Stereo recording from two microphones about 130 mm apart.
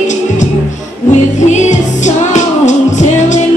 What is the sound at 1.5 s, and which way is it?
Music, 65° left (ahead or behind).